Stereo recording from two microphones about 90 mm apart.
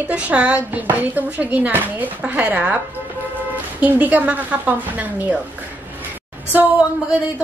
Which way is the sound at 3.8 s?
20° right (ahead or behind).